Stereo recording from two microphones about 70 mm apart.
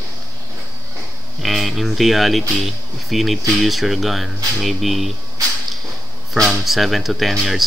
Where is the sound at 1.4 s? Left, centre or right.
Centre.